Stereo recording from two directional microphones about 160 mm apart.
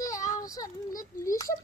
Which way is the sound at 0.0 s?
20° left (ahead or behind).